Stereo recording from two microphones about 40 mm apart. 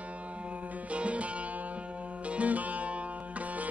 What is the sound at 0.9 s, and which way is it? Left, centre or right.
Music, right.